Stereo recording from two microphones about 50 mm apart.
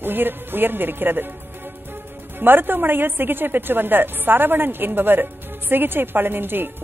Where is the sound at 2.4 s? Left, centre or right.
Right.